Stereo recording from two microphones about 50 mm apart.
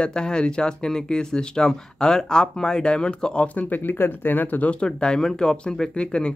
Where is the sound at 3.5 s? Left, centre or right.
Left; by 6.3 s centre.